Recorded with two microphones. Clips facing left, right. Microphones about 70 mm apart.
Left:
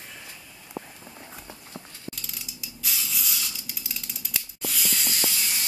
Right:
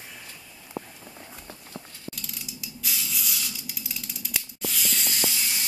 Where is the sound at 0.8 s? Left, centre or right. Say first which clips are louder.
Right 1 dB; centre.